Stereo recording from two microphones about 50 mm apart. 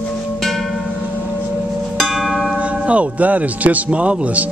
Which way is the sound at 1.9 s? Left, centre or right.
Centre.